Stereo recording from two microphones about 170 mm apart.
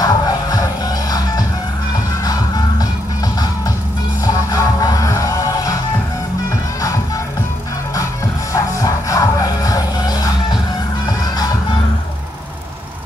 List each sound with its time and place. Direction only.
0.0 s music: 20° left (ahead or behind)
4.2 s music: 20° left (ahead or behind)
8.5 s music: 20° left (ahead or behind)